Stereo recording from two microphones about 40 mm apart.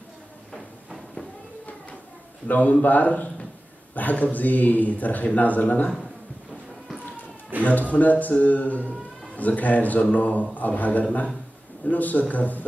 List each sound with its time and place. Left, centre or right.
0.6 s a sound: centre
2.4 s speech: left
7.6 s speech: left